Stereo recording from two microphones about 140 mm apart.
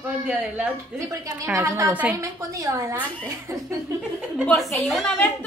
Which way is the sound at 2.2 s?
25° right (ahead or behind).